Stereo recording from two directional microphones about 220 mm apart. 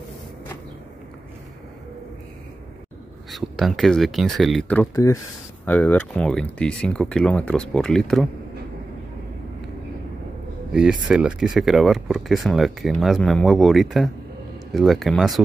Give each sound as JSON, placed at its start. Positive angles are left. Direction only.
{"t": 3.3, "sound": "speech", "side_deg": 0}
{"t": 10.7, "sound": "speech", "side_deg": -5}